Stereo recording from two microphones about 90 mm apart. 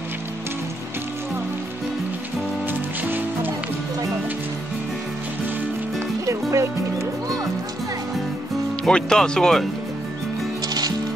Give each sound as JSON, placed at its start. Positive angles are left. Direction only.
{"t": 2.7, "sound": "music", "side_deg": -20}
{"t": 6.2, "sound": "music", "side_deg": -30}
{"t": 8.8, "sound": "speech", "side_deg": 5}